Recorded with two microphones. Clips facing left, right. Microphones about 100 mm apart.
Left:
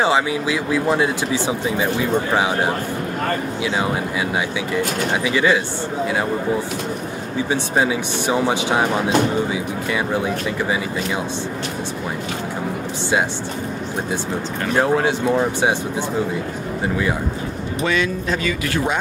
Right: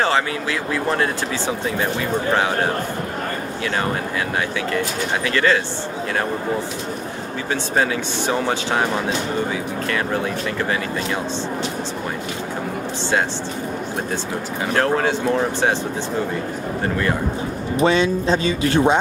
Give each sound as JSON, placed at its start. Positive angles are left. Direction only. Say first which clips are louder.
{"t": 0.0, "sound": "speech", "louder": "left 2 dB", "side_deg": 15}
{"t": 5.2, "sound": "speech", "louder": "even", "side_deg": 10}
{"t": 7.7, "sound": "speech", "louder": "even", "side_deg": 10}
{"t": 14.8, "sound": "speech", "louder": "left 1 dB", "side_deg": 10}
{"t": 16.8, "sound": "speech", "louder": "left 1 dB", "side_deg": 10}
{"t": 17.8, "sound": "speech", "louder": "right 4 dB", "side_deg": -30}